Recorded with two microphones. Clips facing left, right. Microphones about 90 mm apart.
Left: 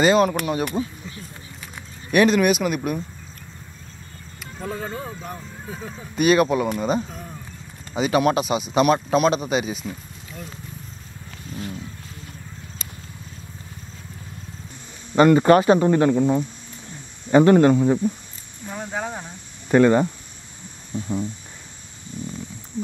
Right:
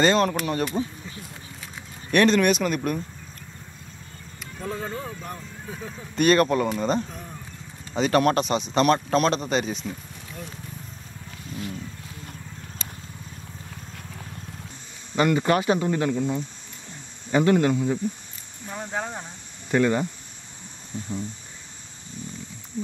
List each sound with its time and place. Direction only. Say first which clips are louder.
0.0 s speech: left 3 dB; 5° left (ahead or behind)
2.0 s speech: left 2 dB; 5° left (ahead or behind)
4.6 s speech: left 1 dB; 5° left (ahead or behind)
15.1 s speech: left 7 dB; 45° left (ahead or behind)
18.7 s speech: left 2 dB; 5° left (ahead or behind)
19.7 s speech: left 6 dB; 50° left (ahead or behind)